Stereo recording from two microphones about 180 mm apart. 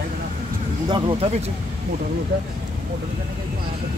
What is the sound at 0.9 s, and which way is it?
Speech, 30° right (ahead or behind).